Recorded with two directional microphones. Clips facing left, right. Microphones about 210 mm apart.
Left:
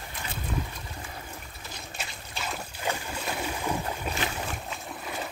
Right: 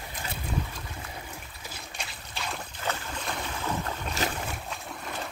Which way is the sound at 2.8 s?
15° left (ahead or behind).